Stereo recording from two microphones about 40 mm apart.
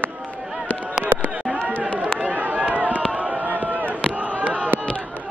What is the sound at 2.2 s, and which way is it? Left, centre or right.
Run, right.